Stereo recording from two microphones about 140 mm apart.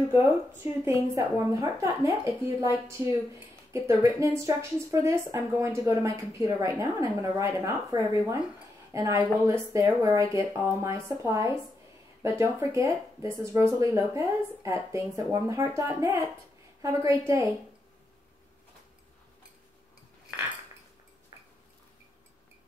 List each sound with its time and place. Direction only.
0.1 s speech: 20° right (ahead or behind)